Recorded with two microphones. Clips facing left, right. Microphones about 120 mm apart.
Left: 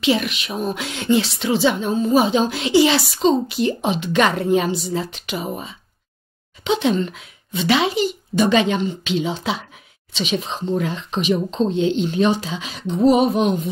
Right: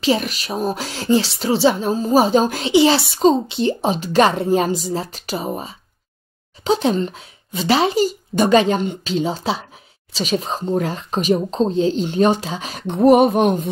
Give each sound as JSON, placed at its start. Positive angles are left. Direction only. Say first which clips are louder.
{"t": 0.0, "sound": "speech", "louder": "even", "side_deg": -35}
{"t": 2.7, "sound": "a woman's voice", "louder": "right 1 dB", "side_deg": -30}
{"t": 12.8, "sound": "a sound", "louder": "right 3 dB", "side_deg": -60}